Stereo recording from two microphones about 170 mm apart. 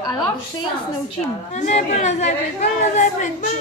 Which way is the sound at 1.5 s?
45° left (ahead or behind).